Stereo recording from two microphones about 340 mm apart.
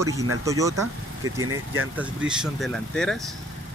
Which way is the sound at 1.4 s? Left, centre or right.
Right.